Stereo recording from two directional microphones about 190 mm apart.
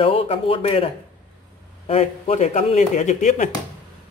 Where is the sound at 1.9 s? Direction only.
35° left (ahead or behind).